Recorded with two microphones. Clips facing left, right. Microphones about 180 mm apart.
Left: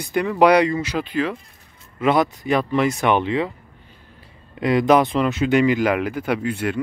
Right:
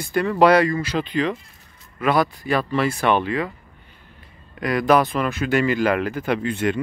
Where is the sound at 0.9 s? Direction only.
5° left (ahead or behind).